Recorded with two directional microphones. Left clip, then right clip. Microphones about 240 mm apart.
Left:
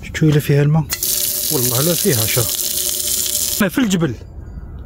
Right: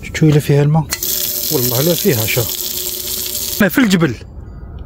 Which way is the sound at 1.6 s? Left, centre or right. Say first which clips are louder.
Right 3 dB; centre.